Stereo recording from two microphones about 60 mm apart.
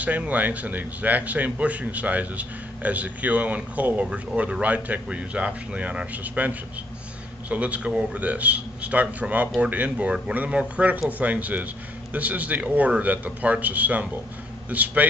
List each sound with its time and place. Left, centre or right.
0.0 s a man's voice: right